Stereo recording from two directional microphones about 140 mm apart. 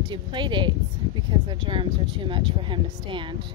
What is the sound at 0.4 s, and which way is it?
Speech, 35° right (ahead or behind).